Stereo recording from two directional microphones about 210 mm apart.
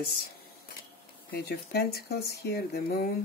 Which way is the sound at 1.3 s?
50° left (ahead or behind).